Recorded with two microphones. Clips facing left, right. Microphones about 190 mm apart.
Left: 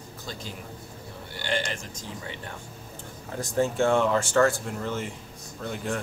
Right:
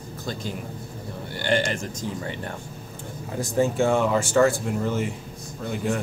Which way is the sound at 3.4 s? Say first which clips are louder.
Right 2 dB; 5° right (ahead or behind).